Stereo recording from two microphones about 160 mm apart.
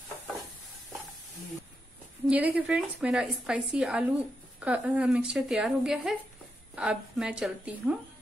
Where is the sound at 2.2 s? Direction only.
10° right (ahead or behind).